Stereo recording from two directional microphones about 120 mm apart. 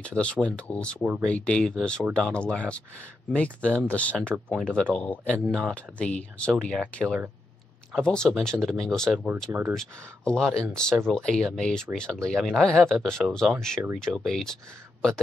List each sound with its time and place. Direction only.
0.0 s speech: 10° left (ahead or behind)
5.4 s speech: centre (ahead or behind)
9.5 s speech: 20° right (ahead or behind)
9.8 s speech: 5° left (ahead or behind)